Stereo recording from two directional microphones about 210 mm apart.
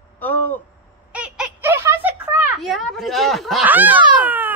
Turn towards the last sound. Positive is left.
turn(degrees=-10)  # may be behind; listen again after turning